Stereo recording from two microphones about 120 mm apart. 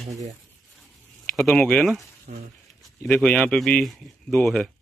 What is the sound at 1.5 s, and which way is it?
A man's voice, 10° left (ahead or behind).